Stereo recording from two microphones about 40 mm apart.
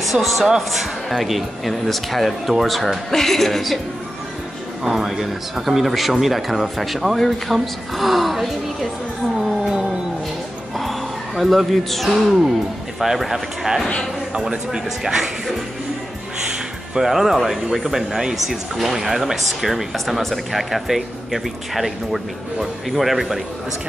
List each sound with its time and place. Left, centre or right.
0.0 s speech: centre
4.8 s speech: centre
10.8 s speech: centre
14.5 s speech: centre
17.0 s speech: centre